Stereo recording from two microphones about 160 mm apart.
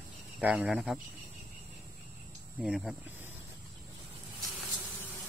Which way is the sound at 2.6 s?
Centre (ahead or behind).